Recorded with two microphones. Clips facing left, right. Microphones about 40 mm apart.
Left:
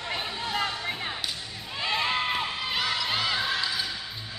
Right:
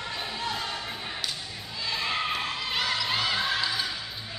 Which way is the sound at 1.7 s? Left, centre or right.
Left.